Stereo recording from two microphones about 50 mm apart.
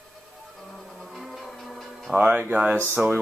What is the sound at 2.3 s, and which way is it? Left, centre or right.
Speech, right.